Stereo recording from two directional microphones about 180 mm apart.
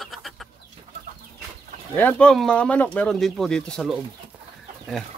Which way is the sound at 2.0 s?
10° left (ahead or behind).